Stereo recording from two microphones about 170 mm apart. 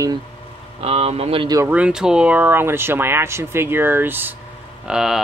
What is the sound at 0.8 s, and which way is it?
Speech, 35° right (ahead or behind).